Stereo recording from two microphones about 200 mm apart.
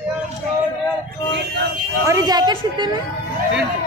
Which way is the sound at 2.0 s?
15° right (ahead or behind).